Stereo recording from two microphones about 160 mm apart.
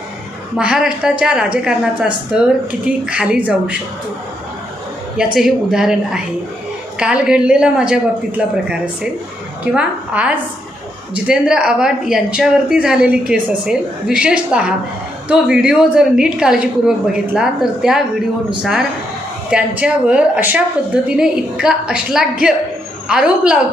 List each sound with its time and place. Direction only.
0.6 s a woman's voice: 5° right (ahead or behind)
5.1 s a woman's voice: 5° right (ahead or behind)